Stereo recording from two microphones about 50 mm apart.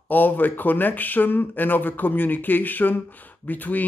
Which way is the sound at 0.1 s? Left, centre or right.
Left.